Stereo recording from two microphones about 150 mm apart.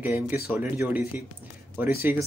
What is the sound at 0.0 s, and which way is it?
Speech, 15° right (ahead or behind).